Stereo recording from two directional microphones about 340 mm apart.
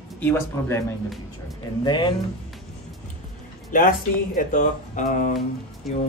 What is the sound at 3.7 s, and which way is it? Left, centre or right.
A man's voice, left.